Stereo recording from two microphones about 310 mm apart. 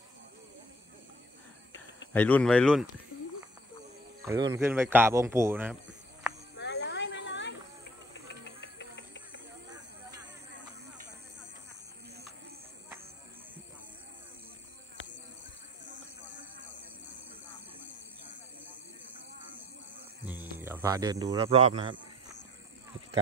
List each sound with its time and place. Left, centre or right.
2.1 s speech: centre
4.2 s speech: centre
6.5 s a sound: left
8.5 s music: left
20.2 s speech: centre